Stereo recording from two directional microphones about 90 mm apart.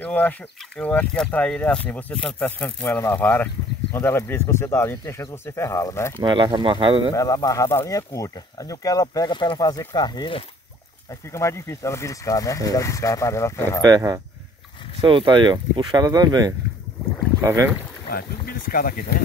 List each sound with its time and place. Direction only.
0.0 s speech: 20° left (ahead or behind)
5.0 s speech: 40° left (ahead or behind)
5.3 s speech: 30° left (ahead or behind)
6.2 s speech: 65° right (ahead or behind)
7.2 s speech: 40° left (ahead or behind); by 9.6 s 60° left (ahead or behind)
9.6 s speech: 45° left (ahead or behind)
11.1 s speech: 35° left (ahead or behind)
13.8 s speech: 50° right (ahead or behind)
15.0 s speech: 65° right (ahead or behind); by 16.5 s 50° right (ahead or behind)
17.4 s speech: 35° right (ahead or behind)